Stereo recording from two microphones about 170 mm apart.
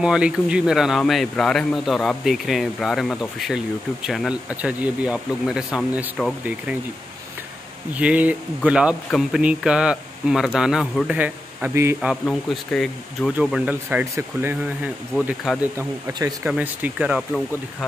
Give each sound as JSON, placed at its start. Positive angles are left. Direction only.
{"t": 0.0, "sound": "speech", "side_deg": -5}
{"t": 7.9, "sound": "speech", "side_deg": -10}
{"t": 12.0, "sound": "speech", "side_deg": 0}
{"t": 16.1, "sound": "speech", "side_deg": -20}
{"t": 16.4, "sound": "speech", "side_deg": -10}